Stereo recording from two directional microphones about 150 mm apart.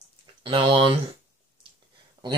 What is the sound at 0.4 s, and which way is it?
Speech, 35° right (ahead or behind).